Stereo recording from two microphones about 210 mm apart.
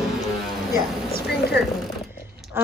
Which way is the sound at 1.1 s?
50° left (ahead or behind).